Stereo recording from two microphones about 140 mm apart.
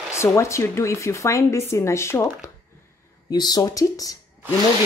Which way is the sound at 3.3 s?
30° left (ahead or behind).